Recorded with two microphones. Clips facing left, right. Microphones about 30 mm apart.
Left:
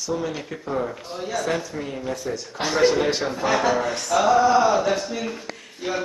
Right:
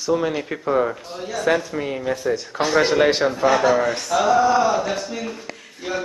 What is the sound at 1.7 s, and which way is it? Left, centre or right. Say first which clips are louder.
Speech: right 5 dB; right.